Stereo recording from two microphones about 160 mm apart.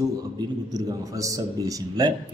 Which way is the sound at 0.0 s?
25° right (ahead or behind).